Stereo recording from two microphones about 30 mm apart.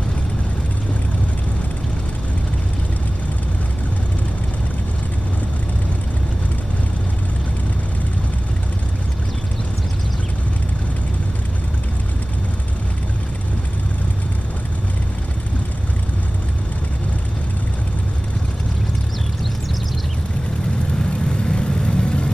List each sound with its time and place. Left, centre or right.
21.0 s vehicle: left